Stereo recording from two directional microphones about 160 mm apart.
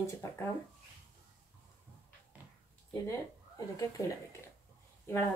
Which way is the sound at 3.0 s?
20° left (ahead or behind).